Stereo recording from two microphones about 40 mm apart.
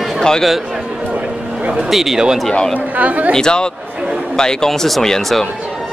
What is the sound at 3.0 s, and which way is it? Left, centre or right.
Speech, right.